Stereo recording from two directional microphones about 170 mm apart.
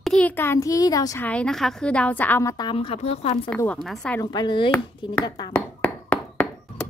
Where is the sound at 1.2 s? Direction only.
5° left (ahead or behind); by 2.7 s 20° left (ahead or behind).